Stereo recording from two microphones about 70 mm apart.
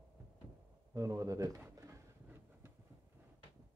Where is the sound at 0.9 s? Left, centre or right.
Right.